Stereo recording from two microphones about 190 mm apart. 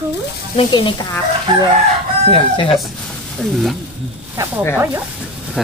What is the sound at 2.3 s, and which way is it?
Speech, 30° left (ahead or behind).